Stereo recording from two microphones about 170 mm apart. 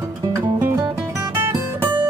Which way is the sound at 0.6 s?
15° right (ahead or behind).